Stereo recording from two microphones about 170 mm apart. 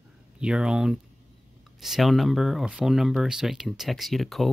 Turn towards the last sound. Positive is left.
turn(degrees=0)  # may be behind; listen again after turning